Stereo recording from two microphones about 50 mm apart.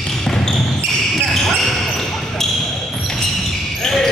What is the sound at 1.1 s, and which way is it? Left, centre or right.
Basketball bounce, centre.